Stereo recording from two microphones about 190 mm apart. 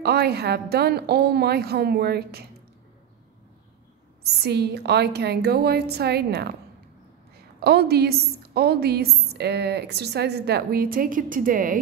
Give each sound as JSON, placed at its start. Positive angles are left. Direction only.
{"t": 0.0, "sound": "a woman's voice", "side_deg": -55}
{"t": 4.4, "sound": "a woman's voice", "side_deg": -60}
{"t": 7.6, "sound": "a woman's voice", "side_deg": -55}